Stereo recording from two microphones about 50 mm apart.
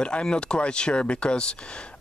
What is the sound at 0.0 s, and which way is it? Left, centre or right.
Speech, centre.